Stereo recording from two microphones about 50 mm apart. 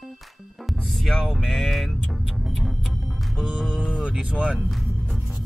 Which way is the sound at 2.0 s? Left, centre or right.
Centre.